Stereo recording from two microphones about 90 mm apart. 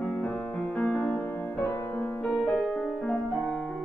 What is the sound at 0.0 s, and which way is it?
Music, 15° left (ahead or behind).